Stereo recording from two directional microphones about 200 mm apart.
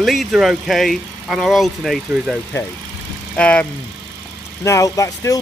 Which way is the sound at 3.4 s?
5° left (ahead or behind).